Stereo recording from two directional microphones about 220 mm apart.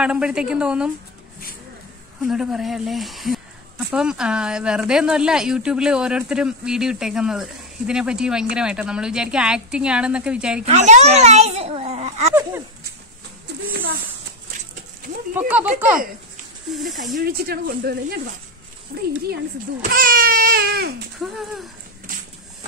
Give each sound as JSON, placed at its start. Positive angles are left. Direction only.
{"t": 0.0, "sound": "a woman's voice", "side_deg": -5}
{"t": 2.2, "sound": "a woman's voice", "side_deg": 0}
{"t": 10.6, "sound": "a child's voice", "side_deg": -30}
{"t": 15.3, "sound": "speech", "side_deg": -5}
{"t": 17.2, "sound": "speech", "side_deg": -45}
{"t": 19.8, "sound": "baby cry", "side_deg": -40}